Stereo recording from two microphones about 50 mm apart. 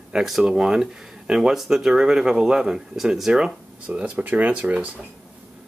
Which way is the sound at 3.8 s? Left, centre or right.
Right.